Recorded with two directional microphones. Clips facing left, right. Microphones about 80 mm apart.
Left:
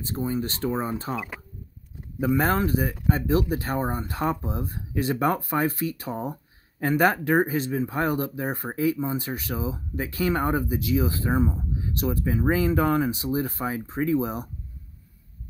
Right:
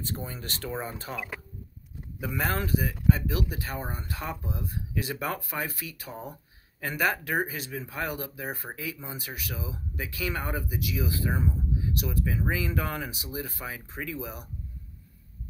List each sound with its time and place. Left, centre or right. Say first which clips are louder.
0.0 s speech: left 9 dB; left